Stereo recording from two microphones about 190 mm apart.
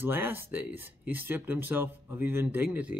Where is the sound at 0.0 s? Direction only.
10° right (ahead or behind).